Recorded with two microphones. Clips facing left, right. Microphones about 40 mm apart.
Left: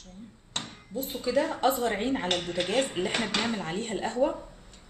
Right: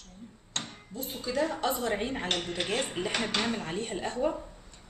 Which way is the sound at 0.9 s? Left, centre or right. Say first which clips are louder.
Left 5 dB; left.